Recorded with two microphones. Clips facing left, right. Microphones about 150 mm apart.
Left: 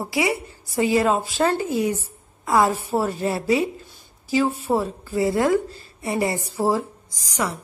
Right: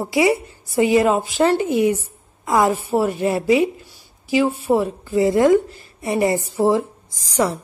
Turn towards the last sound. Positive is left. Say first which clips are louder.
# right 6 dB
turn(degrees=-30)  # may be behind; listen again after turning